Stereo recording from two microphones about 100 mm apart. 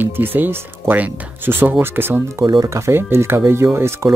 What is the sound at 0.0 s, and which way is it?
Speech, 20° right (ahead or behind).